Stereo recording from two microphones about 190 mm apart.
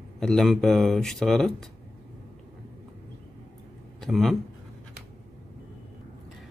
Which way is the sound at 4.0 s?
Centre (ahead or behind).